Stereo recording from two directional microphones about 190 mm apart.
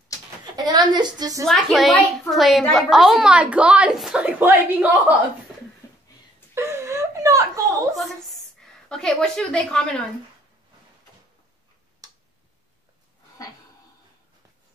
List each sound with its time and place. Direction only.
0.6 s a woman's voice: 20° right (ahead or behind)
1.4 s a woman's voice: centre (ahead or behind)
5.8 s a sound: 15° left (ahead or behind)
6.5 s whimper: 15° right (ahead or behind)
7.9 s a sound: centre (ahead or behind)
8.8 s a woman's voice: 5° left (ahead or behind)
12.0 s tick-tock: 20° right (ahead or behind)